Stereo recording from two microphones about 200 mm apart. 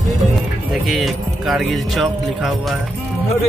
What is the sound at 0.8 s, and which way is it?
Speech, centre (ahead or behind).